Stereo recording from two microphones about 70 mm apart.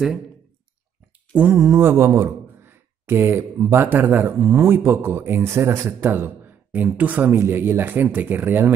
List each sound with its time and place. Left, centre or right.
1.3 s mantra: right
1.6 s a man's voice: right